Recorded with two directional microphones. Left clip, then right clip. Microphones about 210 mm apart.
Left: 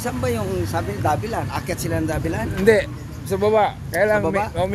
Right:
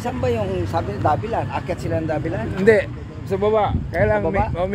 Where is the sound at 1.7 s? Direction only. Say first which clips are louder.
Even; 35° left (ahead or behind).